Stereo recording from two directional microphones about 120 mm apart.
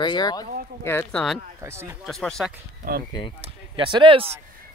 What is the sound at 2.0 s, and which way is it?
Speech, 5° left (ahead or behind).